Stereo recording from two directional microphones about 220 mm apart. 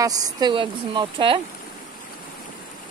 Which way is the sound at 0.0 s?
15° right (ahead or behind).